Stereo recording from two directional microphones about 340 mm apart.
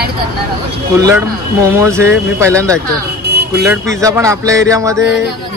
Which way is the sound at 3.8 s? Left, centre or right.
Centre.